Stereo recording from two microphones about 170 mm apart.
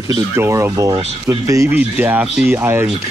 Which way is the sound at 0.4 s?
15° right (ahead or behind).